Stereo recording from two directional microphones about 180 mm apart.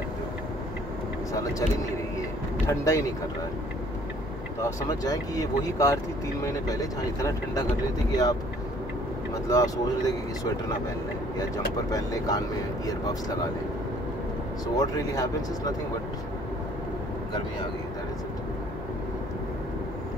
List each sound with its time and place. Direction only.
2.6 s speech: 15° left (ahead or behind)
4.6 s speech: 20° left (ahead or behind)
9.5 s speech: 20° left (ahead or behind)
14.8 s speech: 20° left (ahead or behind)